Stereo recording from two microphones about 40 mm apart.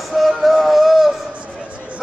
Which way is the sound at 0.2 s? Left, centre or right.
Centre.